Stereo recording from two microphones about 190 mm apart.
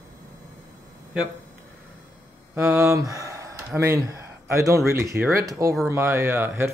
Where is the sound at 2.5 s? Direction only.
15° right (ahead or behind).